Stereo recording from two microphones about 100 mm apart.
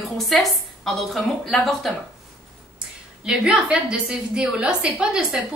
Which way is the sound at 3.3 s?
5° right (ahead or behind).